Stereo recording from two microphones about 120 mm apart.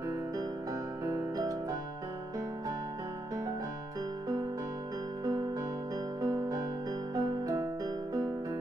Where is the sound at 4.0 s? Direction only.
30° right (ahead or behind).